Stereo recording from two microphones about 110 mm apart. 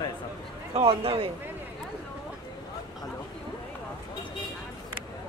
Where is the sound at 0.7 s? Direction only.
60° right (ahead or behind).